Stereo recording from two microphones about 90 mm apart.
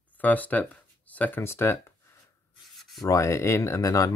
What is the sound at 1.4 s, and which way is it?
Speech, 30° left (ahead or behind).